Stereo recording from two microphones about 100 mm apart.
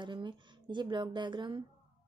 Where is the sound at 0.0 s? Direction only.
50° right (ahead or behind).